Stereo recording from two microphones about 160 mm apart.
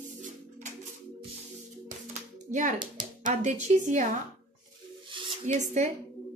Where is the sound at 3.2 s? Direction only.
50° right (ahead or behind).